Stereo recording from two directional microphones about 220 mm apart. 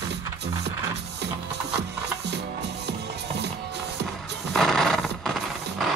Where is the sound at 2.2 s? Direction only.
50° right (ahead or behind).